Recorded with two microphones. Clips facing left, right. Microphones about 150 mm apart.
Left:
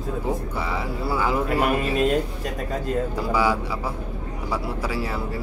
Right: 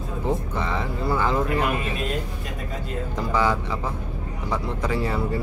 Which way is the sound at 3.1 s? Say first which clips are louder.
Right 3 dB; 10° left (ahead or behind).